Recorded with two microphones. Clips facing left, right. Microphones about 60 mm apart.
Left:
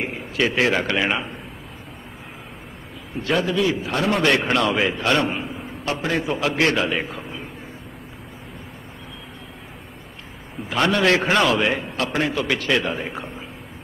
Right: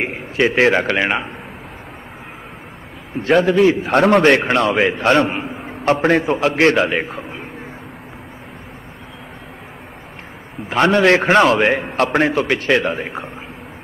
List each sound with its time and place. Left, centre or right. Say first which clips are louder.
0.4 s a man's voice: right 6 dB; right
3.2 s a man's voice: right 8 dB; right
4.5 s a man's voice: right 4 dB; right
10.7 s a man's voice: right 5 dB; right